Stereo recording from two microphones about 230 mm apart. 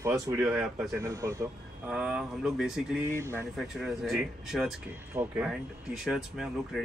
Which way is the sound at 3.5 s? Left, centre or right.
Centre.